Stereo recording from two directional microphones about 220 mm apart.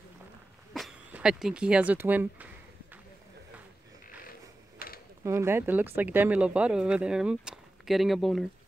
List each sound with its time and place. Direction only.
0.7 s speech: centre (ahead or behind)
4.7 s a sound: 40° left (ahead or behind)
5.2 s speech: 10° right (ahead or behind)